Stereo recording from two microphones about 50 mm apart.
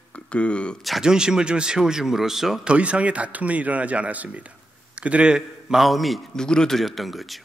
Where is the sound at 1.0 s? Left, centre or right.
Centre.